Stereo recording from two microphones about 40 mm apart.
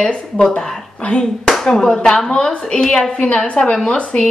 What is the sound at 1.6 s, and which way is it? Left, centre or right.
A woman's voice, centre.